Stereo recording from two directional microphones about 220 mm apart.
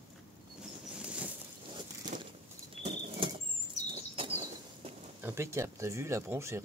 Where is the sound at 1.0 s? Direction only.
5° right (ahead or behind).